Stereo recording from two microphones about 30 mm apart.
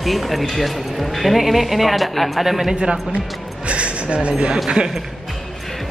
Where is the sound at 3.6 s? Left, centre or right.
Right.